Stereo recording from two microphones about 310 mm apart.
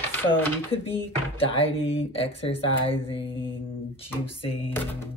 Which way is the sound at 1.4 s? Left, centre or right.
Centre.